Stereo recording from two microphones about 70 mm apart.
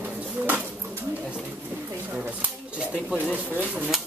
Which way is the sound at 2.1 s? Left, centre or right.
Right.